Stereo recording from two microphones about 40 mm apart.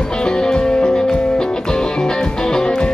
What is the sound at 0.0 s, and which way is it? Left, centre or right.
Music, left.